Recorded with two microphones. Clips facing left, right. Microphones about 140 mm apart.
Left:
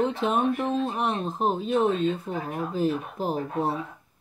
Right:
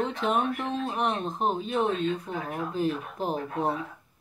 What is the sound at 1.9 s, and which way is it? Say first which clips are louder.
Speech: left 3 dB; 35° left (ahead or behind).